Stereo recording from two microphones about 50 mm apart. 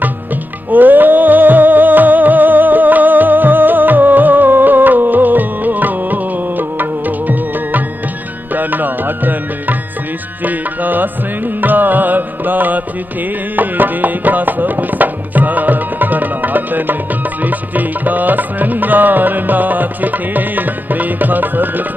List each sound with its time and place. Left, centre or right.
0.7 s music: right